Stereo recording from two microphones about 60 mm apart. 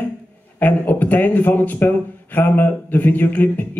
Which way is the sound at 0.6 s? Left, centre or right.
Left.